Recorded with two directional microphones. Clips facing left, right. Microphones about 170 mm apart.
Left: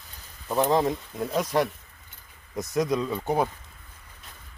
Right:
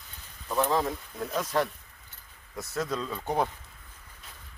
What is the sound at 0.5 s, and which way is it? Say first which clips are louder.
Speech: left 4 dB; 20° left (ahead or behind).